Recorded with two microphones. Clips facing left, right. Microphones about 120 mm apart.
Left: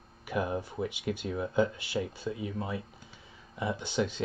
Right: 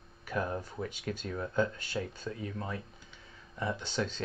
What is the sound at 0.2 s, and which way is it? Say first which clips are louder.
Speech: left 3 dB; 10° left (ahead or behind).